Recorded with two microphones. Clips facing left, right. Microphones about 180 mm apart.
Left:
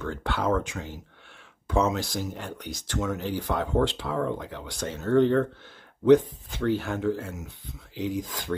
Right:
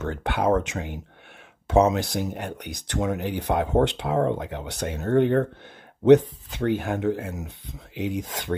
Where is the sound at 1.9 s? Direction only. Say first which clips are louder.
Right 4 dB; 65° right (ahead or behind).